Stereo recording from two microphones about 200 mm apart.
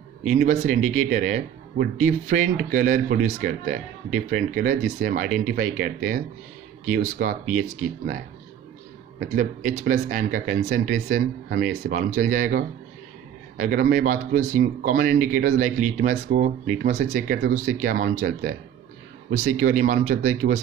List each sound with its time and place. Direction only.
0.5 s speech: 40° right (ahead or behind)
9.2 s speech: 40° right (ahead or behind)